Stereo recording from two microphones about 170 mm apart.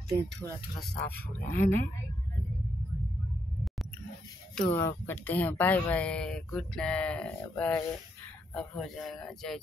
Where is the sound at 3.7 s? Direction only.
Centre (ahead or behind).